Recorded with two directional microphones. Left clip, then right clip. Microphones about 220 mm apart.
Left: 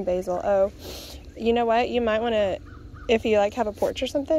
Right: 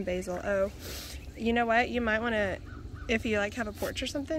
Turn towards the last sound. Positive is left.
turn(degrees=15)  # may be behind; listen again after turning